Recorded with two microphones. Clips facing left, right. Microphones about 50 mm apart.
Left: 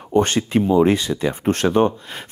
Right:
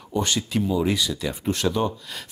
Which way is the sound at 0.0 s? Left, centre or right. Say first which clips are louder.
Left 8 dB; left.